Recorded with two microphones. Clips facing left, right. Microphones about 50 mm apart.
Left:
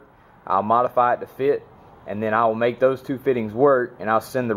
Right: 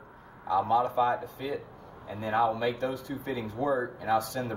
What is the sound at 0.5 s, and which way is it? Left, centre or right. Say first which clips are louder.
Speech: left 7 dB; left.